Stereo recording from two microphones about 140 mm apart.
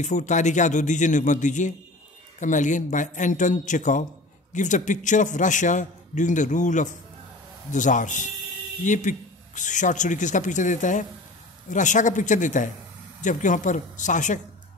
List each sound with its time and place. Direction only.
0.0 s a man's voice: 60° left (ahead or behind)